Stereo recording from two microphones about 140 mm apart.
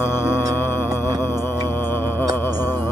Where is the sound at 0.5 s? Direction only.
15° left (ahead or behind).